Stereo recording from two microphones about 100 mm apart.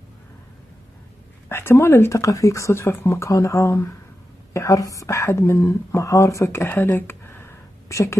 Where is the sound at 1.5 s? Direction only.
25° left (ahead or behind).